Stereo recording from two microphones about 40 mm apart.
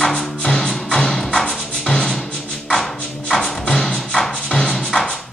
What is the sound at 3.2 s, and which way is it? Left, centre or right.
Music, centre.